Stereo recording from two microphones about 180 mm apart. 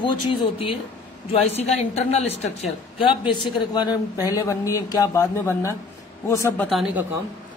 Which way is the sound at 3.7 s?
25° left (ahead or behind).